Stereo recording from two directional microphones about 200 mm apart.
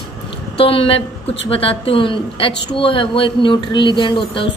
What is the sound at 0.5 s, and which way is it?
A woman's voice, 25° left (ahead or behind).